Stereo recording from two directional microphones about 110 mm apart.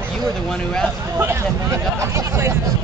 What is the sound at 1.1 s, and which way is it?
Speech, 25° right (ahead or behind).